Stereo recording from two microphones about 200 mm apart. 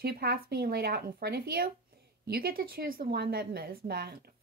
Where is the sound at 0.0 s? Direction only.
50° right (ahead or behind).